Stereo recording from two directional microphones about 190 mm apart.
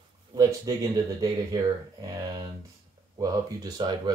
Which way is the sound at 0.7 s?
20° right (ahead or behind).